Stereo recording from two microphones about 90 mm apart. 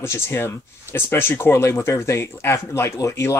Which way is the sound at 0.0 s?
30° left (ahead or behind).